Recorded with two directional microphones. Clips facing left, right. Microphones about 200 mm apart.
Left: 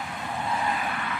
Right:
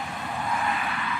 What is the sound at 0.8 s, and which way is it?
Vehicle, 45° left (ahead or behind).